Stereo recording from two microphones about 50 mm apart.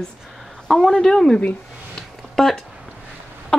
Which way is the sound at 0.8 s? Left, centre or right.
Centre.